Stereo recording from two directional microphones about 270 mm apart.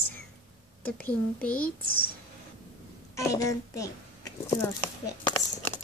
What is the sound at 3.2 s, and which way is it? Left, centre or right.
A child's voice, centre.